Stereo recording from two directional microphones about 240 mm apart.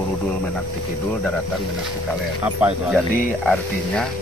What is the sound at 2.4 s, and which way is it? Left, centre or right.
A man's voice, centre.